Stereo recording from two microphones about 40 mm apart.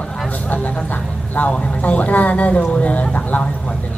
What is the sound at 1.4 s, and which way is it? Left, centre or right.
Speech, left.